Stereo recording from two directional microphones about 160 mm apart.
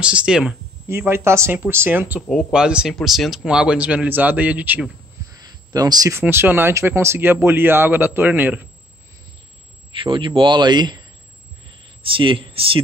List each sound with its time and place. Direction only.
0.0 s speech: 5° right (ahead or behind)
5.3 s speech: 25° right (ahead or behind)
9.9 s a man's voice: 30° right (ahead or behind)